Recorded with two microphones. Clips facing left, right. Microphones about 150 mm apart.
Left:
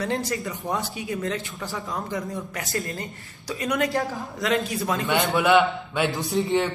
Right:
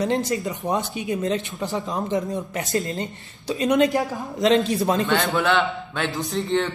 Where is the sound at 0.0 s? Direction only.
20° right (ahead or behind).